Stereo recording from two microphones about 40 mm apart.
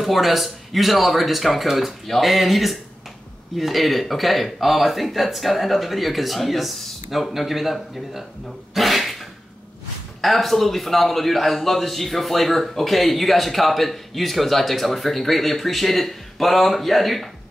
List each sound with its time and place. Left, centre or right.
0.0 s a man's voice: centre
8.7 s a sound: centre
10.2 s a man's voice: centre